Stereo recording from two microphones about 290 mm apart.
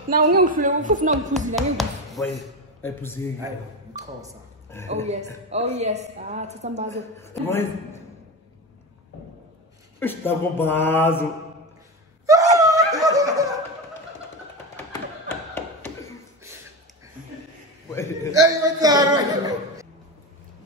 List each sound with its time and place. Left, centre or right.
0.1 s a woman's voice: right
1.5 s speech: centre
3.3 s a man's voice: centre
4.8 s a woman's voice: right
6.9 s speech: centre
9.9 s speech: centre
12.5 s snicker: centre
14.9 s thump: centre
17.9 s speech: centre
18.4 s a man's voice: centre